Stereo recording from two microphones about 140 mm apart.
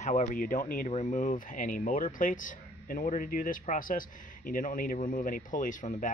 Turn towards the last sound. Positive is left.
turn(degrees=65)  # may be behind; listen again after turning